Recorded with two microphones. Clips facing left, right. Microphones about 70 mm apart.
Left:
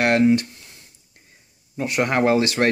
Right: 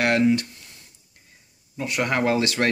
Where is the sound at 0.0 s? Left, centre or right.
Left.